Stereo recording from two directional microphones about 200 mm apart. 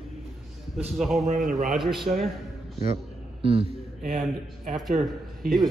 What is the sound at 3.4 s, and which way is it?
Speech, 30° right (ahead or behind).